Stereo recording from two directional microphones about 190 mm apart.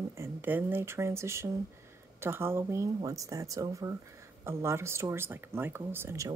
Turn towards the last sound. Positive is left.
turn(degrees=-15)  # may be behind; listen again after turning